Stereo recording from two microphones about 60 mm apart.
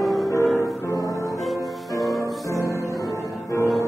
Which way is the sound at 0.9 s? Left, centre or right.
Left.